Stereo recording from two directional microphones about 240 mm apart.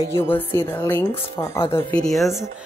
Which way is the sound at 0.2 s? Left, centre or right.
Centre.